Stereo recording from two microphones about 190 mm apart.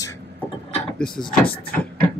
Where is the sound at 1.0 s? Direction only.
5° left (ahead or behind).